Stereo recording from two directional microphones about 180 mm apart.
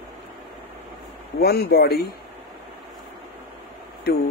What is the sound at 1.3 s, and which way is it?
Speech, 60° left (ahead or behind).